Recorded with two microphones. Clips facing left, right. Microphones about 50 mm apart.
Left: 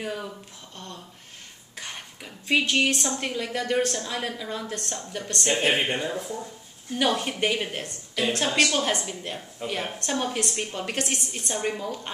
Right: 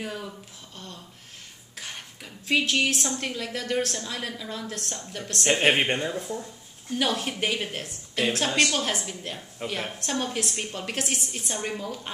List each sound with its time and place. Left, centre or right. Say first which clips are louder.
0.0 s a woman's voice: left 2 dB; centre
1.8 s a woman's voice: left 1 dB; centre
5.5 s speech: right 2 dB; right
5.9 s a woman's voice: right 1 dB; centre
9.6 s a woman's voice: left 1 dB; right
9.9 s a woman's voice: left 1 dB; centre